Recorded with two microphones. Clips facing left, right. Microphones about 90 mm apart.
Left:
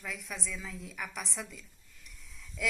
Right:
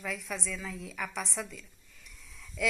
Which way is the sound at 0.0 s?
Centre (ahead or behind).